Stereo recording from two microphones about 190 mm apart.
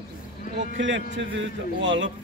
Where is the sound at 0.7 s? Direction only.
75° right (ahead or behind).